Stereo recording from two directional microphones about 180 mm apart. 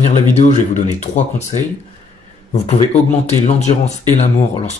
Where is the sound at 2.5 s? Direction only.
35° left (ahead or behind).